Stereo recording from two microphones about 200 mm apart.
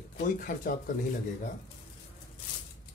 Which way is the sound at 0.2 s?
40° left (ahead or behind).